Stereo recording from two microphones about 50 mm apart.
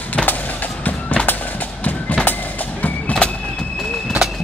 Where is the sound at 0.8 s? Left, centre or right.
Left.